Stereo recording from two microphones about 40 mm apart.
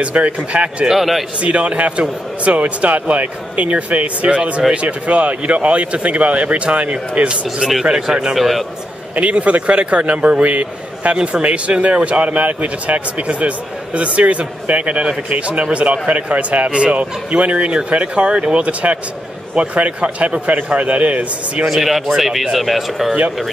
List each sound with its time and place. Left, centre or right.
0.0 s speech: right
0.8 s speech: centre
1.4 s speech: right
8.4 s speech: centre
9.1 s speech: right
21.6 s speech: centre